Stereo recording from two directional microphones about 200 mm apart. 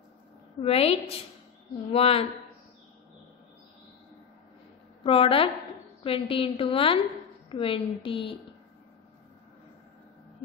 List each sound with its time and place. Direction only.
0.6 s a woman's voice: 30° left (ahead or behind)
5.0 s a woman's voice: 25° left (ahead or behind)